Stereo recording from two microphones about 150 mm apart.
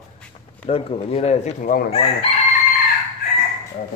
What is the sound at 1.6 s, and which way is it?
Speech, 75° left (ahead or behind).